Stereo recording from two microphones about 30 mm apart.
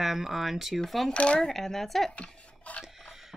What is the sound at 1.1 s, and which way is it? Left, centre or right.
Speech, left.